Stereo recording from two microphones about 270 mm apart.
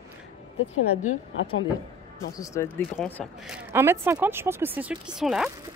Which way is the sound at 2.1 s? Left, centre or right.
Centre.